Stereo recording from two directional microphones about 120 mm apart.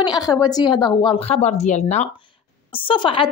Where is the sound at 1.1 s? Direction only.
65° left (ahead or behind).